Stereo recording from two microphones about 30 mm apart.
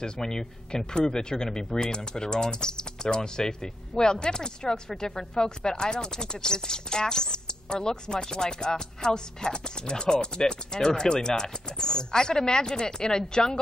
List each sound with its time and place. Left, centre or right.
0.0 s speech: left